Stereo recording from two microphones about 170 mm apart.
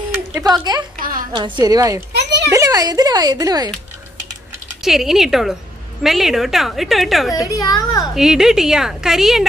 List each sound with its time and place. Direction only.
0.3 s speech: 20° right (ahead or behind)
0.9 s a sound: 55° right (ahead or behind)
1.3 s a woman's voice: 25° right (ahead or behind)
2.1 s children playing: 85° right
2.5 s speech: 20° right (ahead or behind)
4.8 s a woman's voice: centre (ahead or behind)
7.4 s a woman's voice: 20° left (ahead or behind)
8.1 s a woman's voice: centre (ahead or behind)